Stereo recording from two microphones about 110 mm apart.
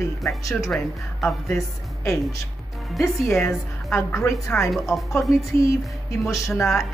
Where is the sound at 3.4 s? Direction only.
20° left (ahead or behind).